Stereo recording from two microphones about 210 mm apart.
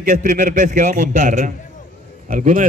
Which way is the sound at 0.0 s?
40° right (ahead or behind).